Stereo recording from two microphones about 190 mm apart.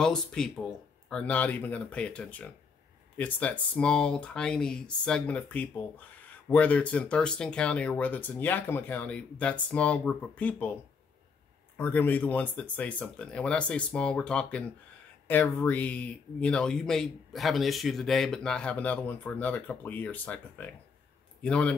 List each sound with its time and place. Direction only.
0.0 s speech: 5° left (ahead or behind)
11.7 s a man's voice: 10° left (ahead or behind)